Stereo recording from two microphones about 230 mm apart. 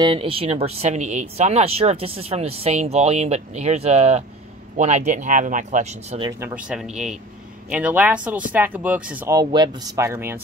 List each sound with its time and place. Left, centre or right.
0.0 s speech: right
6.4 s speech: centre